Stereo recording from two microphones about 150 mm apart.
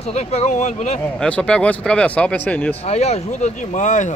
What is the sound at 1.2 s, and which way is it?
Speech, 5° left (ahead or behind).